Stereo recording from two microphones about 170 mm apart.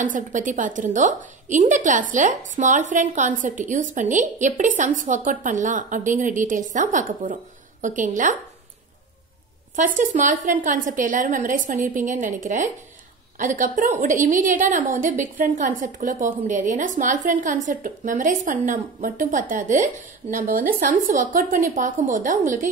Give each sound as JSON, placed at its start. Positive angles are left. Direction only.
{"t": 0.0, "sound": "a woman's voice", "side_deg": -50}
{"t": 9.8, "sound": "a woman's voice", "side_deg": -50}